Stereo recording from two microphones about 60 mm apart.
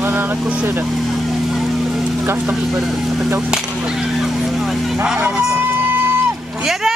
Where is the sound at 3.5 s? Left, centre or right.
Centre.